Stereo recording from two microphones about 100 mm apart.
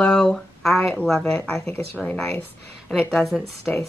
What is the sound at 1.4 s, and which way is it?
A woman's voice, 15° left (ahead or behind).